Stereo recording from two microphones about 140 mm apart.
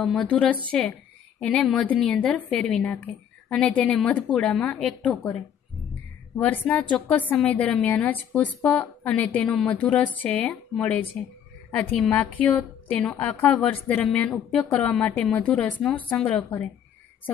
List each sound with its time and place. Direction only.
0.0 s a woman's voice: centre (ahead or behind)
6.3 s a woman's voice: 10° left (ahead or behind)
12.1 s a woman's voice: 15° left (ahead or behind)